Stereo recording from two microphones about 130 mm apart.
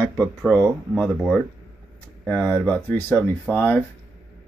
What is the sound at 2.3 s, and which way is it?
Speech, 10° left (ahead or behind).